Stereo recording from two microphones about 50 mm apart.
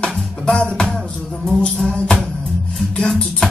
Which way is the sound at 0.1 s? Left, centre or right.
Centre.